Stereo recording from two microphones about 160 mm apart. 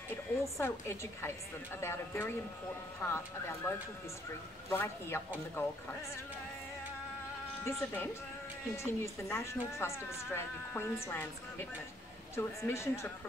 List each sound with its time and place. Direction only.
0.1 s speech: 15° left (ahead or behind)
7.6 s speech: 15° left (ahead or behind)
12.6 s speech: 15° left (ahead or behind)